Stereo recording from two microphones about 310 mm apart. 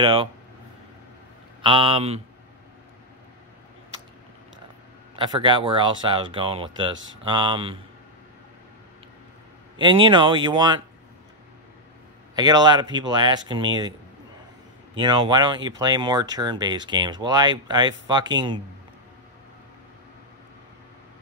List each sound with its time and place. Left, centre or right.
0.0 s speech: centre
1.6 s speech: centre
5.1 s speech: centre
9.8 s speech: centre
12.4 s speech: centre
15.0 s speech: centre